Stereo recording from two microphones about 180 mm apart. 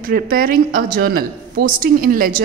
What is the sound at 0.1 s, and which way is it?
Speech, 55° right (ahead or behind).